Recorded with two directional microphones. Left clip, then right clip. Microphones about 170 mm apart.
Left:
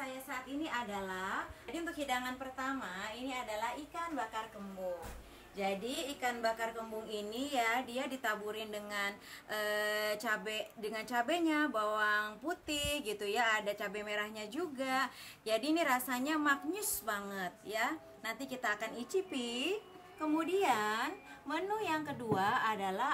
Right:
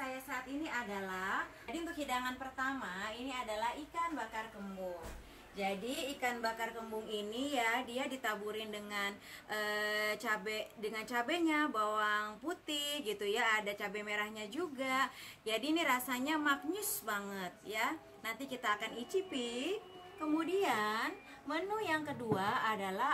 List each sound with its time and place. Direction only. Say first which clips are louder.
0.3 s a woman's voice: left 3 dB; centre (ahead or behind)
5.6 s a woman's voice: left 1 dB; 5° left (ahead or behind)